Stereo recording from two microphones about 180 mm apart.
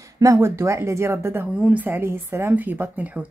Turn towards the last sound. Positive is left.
turn(degrees=-10)  # may be behind; listen again after turning